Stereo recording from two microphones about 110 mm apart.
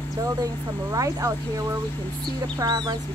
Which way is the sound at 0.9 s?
30° right (ahead or behind).